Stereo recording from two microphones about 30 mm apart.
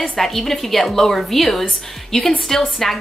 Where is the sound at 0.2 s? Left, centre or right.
Centre.